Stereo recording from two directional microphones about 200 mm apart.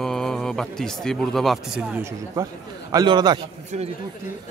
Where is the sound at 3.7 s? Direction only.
35° right (ahead or behind).